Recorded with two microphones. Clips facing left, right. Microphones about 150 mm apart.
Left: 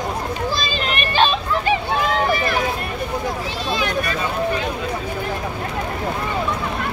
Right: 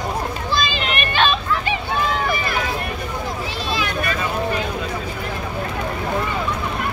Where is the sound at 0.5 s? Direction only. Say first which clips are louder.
Right 1 dB; 35° left (ahead or behind).